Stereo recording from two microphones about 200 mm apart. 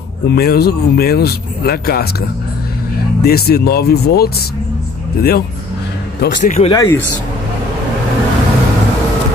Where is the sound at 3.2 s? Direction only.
50° left (ahead or behind).